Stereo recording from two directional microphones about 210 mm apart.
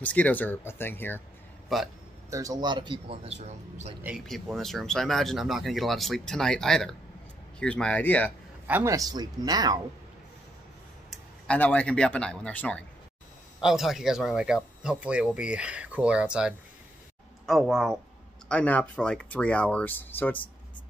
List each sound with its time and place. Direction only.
0.0 s speech: 5° left (ahead or behind)
2.3 s speech: 15° right (ahead or behind); by 3.9 s 30° right (ahead or behind)
4.0 s speech: 5° right (ahead or behind)
8.6 s speech: 10° right (ahead or behind)
11.1 s a man's voice: 5° left (ahead or behind)